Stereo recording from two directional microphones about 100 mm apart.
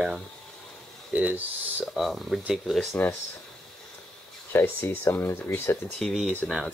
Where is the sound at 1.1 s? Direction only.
15° right (ahead or behind).